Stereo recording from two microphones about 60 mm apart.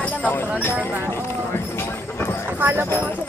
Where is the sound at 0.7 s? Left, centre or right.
Right.